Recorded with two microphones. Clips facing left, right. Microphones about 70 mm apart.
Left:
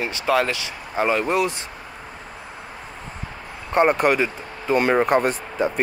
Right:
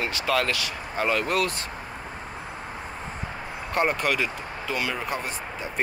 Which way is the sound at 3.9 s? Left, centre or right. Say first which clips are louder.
Left 7 dB; left.